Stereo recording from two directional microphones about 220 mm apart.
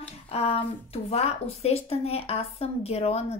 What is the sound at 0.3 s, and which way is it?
Speech, 25° left (ahead or behind).